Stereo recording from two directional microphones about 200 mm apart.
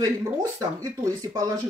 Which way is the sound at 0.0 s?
15° right (ahead or behind).